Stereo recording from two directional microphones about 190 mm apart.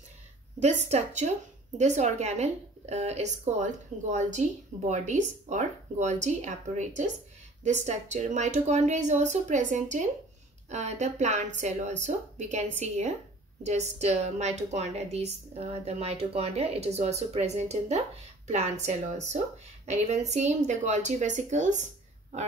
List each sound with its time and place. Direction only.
0.6 s a woman's voice: 35° right (ahead or behind)